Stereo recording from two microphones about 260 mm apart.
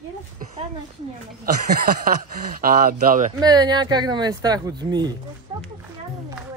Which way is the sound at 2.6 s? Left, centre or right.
Right.